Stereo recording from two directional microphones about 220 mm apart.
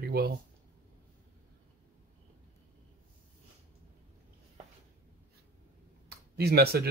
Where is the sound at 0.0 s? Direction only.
45° right (ahead or behind).